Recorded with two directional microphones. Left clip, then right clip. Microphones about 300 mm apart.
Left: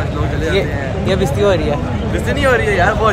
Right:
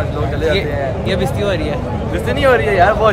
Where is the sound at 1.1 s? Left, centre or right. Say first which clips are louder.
Left 6 dB; centre.